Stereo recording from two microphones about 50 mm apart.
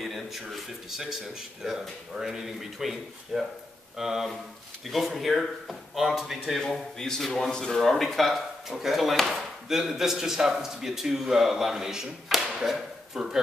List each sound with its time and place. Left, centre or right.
0.0 s a man's voice: centre
6.6 s a man's voice: centre